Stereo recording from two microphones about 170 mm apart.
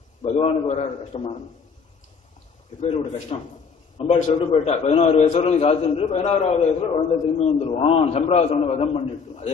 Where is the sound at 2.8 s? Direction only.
35° left (ahead or behind).